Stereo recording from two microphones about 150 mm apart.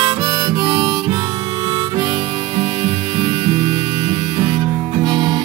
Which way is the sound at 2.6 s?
30° right (ahead or behind).